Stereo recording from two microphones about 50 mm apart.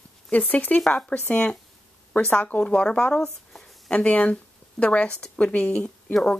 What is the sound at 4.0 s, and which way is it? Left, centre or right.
Speech, left.